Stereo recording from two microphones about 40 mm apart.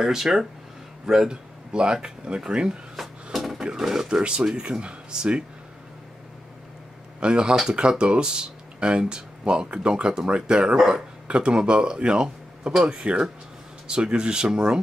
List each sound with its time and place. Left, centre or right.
0.0 s speech: centre
3.3 s a sound: centre
3.7 s speech: centre
4.1 s speech: right
7.2 s speech: right